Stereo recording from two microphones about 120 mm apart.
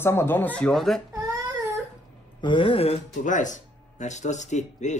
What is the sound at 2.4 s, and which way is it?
Speech, 45° left (ahead or behind).